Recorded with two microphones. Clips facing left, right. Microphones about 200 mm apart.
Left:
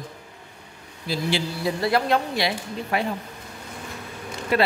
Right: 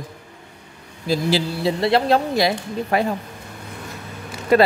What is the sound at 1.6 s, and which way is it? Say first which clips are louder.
Speech: right 3 dB; 25° right (ahead or behind).